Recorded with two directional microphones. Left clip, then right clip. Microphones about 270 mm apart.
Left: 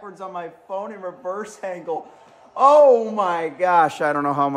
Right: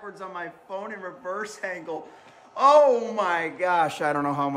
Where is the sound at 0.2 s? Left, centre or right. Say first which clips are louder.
Left 5 dB; centre.